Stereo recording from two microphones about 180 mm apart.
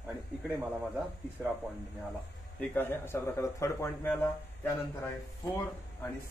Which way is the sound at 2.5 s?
10° left (ahead or behind).